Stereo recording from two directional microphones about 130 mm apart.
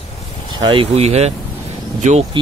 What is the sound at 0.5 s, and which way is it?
Speech, 40° right (ahead or behind).